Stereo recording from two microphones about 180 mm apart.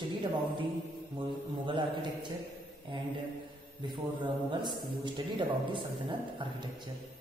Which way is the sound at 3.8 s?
25° right (ahead or behind).